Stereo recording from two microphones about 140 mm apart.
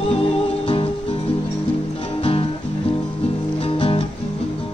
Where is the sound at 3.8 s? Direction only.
40° left (ahead or behind).